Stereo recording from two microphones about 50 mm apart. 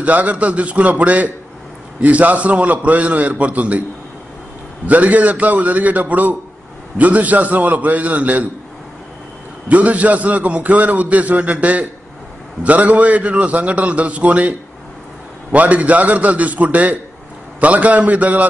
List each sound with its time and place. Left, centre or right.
0.0 s a man's voice: right
4.8 s a man's voice: right
9.7 s a man's voice: right
15.5 s a man's voice: right